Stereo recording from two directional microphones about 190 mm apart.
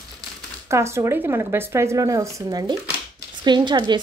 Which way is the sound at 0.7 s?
15° right (ahead or behind).